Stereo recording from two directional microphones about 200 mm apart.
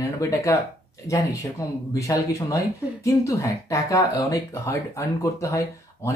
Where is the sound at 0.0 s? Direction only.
15° left (ahead or behind).